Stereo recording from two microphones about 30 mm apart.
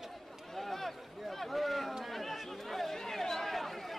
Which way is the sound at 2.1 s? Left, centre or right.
Centre.